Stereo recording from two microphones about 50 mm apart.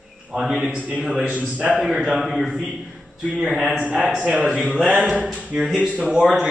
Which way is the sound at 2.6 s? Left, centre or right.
Centre.